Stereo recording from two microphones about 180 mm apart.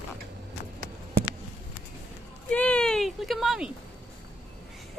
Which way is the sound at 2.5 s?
5° left (ahead or behind).